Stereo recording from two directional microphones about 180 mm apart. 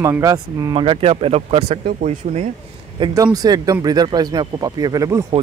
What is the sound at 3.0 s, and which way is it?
Speech, 25° right (ahead or behind).